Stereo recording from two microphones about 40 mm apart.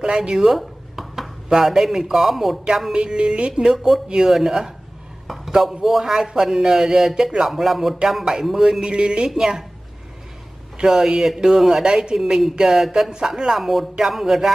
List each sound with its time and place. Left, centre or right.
0.0 s speech: right
0.6 s a sound: centre
1.5 s a man's voice: centre
2.9 s a man's voice: right
10.8 s a man's voice: centre
12.2 s a man's voice: centre